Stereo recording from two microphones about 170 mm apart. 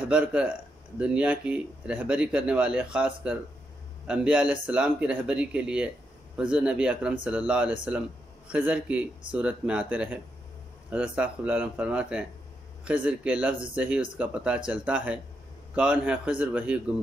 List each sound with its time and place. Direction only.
0.1 s speech: 5° right (ahead or behind)